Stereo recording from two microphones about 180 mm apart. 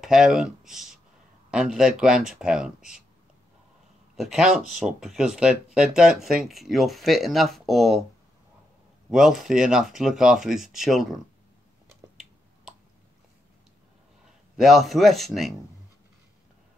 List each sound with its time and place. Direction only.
0.0 s speech: centre (ahead or behind)
4.2 s speech: 5° right (ahead or behind)
9.1 s speech: centre (ahead or behind)
14.6 s speech: centre (ahead or behind)